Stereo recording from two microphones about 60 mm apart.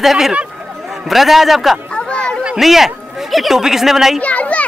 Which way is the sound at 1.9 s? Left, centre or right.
Centre.